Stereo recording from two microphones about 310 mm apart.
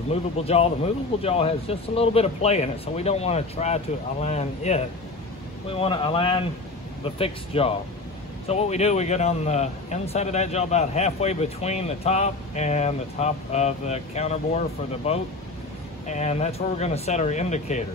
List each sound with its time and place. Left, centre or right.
0.1 s a man's voice: centre